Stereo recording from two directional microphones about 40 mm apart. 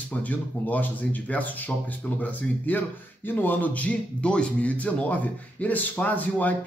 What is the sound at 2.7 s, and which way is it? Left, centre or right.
A man's voice, left.